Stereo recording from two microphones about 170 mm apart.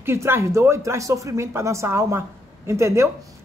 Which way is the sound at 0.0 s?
15° right (ahead or behind).